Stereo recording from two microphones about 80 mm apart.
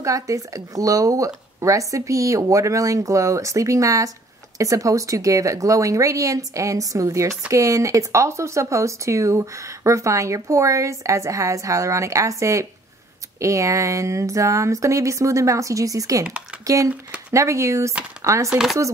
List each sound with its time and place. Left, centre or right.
0.0 s speech: right
18.5 s speech: centre